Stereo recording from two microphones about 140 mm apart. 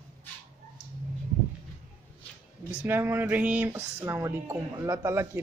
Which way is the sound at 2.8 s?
15° right (ahead or behind).